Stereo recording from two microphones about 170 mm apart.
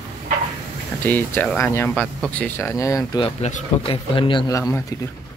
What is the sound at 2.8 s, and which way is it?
Speech, 20° left (ahead or behind).